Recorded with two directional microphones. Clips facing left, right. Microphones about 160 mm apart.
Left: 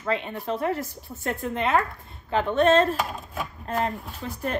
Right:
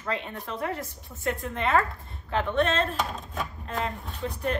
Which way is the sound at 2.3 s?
35° left (ahead or behind).